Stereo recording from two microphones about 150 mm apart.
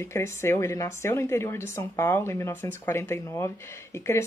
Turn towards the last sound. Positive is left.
turn(degrees=15)  # may be behind; listen again after turning